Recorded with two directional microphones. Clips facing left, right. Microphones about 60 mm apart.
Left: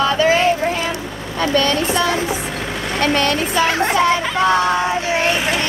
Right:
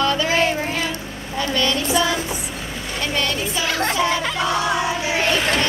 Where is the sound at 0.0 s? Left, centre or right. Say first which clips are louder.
Left 4 dB; left.